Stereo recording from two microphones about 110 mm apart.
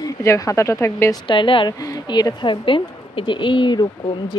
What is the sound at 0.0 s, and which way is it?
Speech, 30° left (ahead or behind).